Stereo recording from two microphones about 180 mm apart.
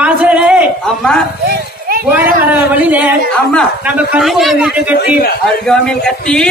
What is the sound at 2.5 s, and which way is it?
A man's voice, 10° right (ahead or behind).